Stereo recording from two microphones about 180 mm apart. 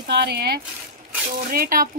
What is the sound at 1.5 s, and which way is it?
Speech, 55° right (ahead or behind).